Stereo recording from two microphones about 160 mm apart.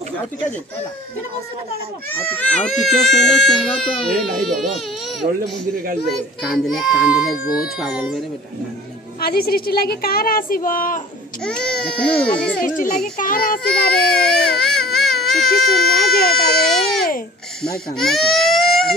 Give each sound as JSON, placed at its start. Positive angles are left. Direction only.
{"t": 2.1, "sound": "speech", "side_deg": 10}
{"t": 6.4, "sound": "speech", "side_deg": 0}
{"t": 9.2, "sound": "a woman's voice", "side_deg": 70}
{"t": 11.4, "sound": "speech", "side_deg": 5}
{"t": 12.6, "sound": "a child's voice", "side_deg": 55}
{"t": 13.7, "sound": "speech", "side_deg": 5}
{"t": 14.6, "sound": "baby cry", "side_deg": 5}
{"t": 15.6, "sound": "speech", "side_deg": 0}
{"t": 16.5, "sound": "baby cry", "side_deg": 0}
{"t": 17.9, "sound": "speech", "side_deg": 0}